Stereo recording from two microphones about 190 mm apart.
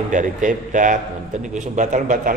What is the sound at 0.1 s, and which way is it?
A man's voice, 40° right (ahead or behind).